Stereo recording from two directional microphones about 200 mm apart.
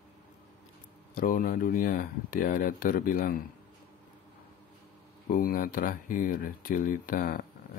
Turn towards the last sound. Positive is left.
turn(degrees=45)  # may be behind; listen again after turning